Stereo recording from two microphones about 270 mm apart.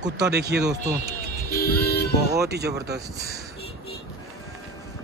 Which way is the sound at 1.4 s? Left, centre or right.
Left.